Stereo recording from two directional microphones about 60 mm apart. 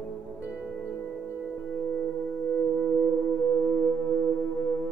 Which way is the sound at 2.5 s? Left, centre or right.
Centre.